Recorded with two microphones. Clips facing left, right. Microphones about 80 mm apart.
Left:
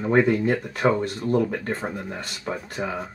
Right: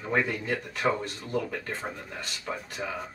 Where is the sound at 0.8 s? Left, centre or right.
Left.